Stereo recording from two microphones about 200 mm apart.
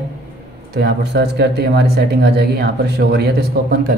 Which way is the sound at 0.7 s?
55° right (ahead or behind).